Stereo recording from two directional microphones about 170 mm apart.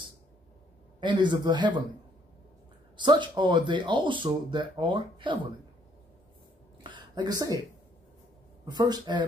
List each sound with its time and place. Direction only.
1.0 s speech: 25° right (ahead or behind)
3.0 s speech: 25° right (ahead or behind)
6.8 s a sound: 30° right (ahead or behind)
8.6 s speech: 25° right (ahead or behind)